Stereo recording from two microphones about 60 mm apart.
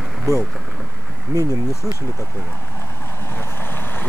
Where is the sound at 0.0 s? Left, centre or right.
Centre.